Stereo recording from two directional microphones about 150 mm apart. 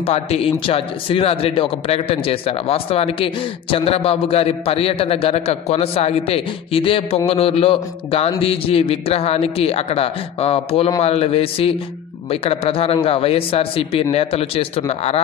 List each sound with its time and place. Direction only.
0.0 s speech: 45° left (ahead or behind)